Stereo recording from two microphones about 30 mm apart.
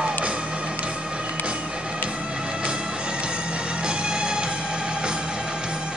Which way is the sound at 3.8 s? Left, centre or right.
Right.